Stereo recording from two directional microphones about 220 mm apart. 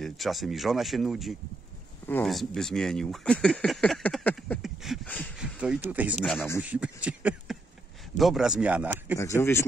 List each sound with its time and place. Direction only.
0.0 s speech: centre (ahead or behind)
5.4 s a sound: 5° right (ahead or behind)
5.9 s speech: 5° right (ahead or behind)
9.2 s speech: 10° left (ahead or behind)